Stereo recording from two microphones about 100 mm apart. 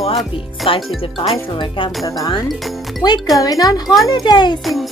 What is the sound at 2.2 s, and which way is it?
A child's voice, 40° left (ahead or behind).